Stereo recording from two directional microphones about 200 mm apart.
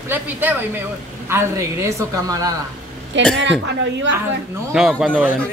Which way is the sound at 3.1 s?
65° right (ahead or behind).